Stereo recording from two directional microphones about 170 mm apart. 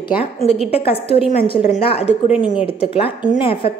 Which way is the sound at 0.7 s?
35° left (ahead or behind).